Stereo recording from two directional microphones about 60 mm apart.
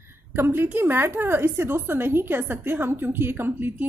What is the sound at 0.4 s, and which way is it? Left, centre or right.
A woman's voice, right.